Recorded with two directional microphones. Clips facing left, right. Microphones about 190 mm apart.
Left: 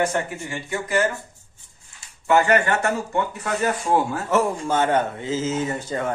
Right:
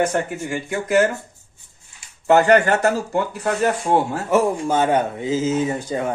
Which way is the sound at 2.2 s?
40° right (ahead or behind).